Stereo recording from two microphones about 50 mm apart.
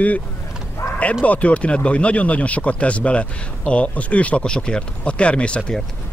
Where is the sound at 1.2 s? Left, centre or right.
Left.